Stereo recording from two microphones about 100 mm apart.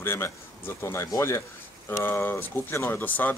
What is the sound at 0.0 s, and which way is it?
Speech, 25° left (ahead or behind).